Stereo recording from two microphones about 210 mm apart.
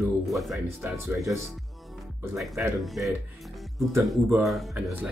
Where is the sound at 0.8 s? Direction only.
10° right (ahead or behind).